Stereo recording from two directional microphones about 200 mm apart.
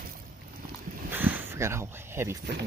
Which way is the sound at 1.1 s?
10° right (ahead or behind).